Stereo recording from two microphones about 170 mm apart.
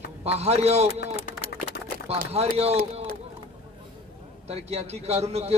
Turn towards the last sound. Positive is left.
turn(degrees=-40)  # may be behind; listen again after turning